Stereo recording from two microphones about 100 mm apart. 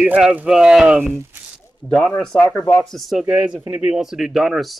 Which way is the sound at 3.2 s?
10° right (ahead or behind).